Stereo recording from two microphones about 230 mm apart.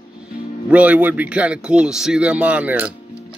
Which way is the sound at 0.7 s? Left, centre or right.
Centre.